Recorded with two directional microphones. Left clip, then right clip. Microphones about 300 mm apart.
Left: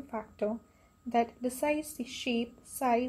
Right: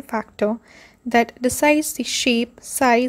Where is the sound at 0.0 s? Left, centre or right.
Right.